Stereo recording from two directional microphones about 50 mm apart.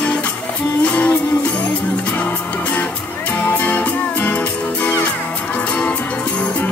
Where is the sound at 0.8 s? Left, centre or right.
Left.